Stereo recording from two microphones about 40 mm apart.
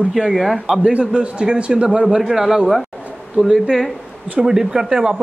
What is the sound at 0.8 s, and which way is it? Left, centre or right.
A man's voice, right.